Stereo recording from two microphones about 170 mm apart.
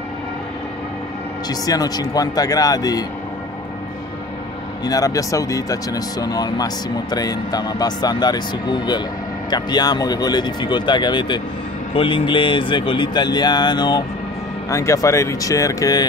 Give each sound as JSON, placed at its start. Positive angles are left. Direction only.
{"t": 1.5, "sound": "speech", "side_deg": 20}
{"t": 4.8, "sound": "speech", "side_deg": 20}